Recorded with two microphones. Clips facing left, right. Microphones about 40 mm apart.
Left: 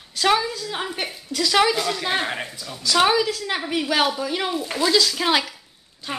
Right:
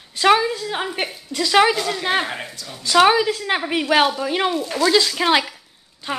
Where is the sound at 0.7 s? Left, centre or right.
Centre.